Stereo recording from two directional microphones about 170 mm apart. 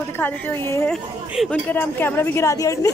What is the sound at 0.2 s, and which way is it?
Speech, 15° left (ahead or behind).